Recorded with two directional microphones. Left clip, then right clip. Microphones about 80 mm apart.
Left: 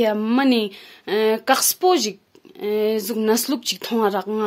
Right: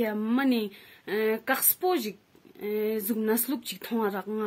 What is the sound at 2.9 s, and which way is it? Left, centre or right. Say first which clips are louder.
Speech: left 8 dB; right.